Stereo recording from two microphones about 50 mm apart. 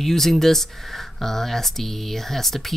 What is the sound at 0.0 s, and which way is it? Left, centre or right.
Speech, centre.